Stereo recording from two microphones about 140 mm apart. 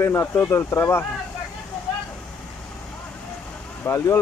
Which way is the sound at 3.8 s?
20° left (ahead or behind).